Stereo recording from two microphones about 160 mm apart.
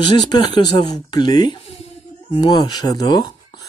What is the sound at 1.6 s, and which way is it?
Speech, 40° left (ahead or behind).